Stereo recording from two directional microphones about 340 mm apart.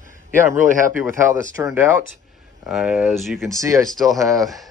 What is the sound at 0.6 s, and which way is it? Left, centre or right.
Speech, right.